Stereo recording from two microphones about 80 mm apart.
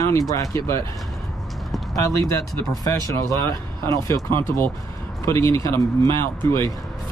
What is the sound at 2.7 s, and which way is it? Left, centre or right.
Speech, left.